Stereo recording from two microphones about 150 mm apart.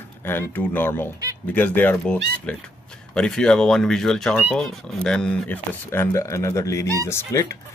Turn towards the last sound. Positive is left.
turn(degrees=20)  # may be behind; listen again after turning